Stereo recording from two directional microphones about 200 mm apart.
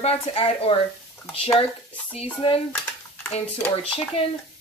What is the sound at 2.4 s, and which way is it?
Dishes, 25° left (ahead or behind).